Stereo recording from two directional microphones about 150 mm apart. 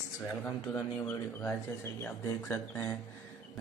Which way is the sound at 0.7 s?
15° left (ahead or behind).